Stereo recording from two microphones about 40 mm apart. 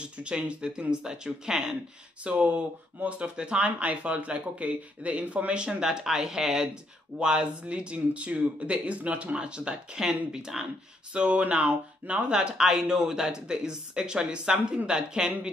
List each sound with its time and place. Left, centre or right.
0.0 s speech: right
2.2 s speech: right
3.3 s speech: right
3.6 s speech: right; by 6.7 s centre
7.2 s speech: right
10.0 s speech: centre
11.1 s speech: right
12.5 s speech: centre